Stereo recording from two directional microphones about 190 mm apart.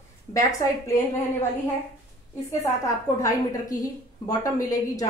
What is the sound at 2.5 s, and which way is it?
A woman's voice, 15° left (ahead or behind).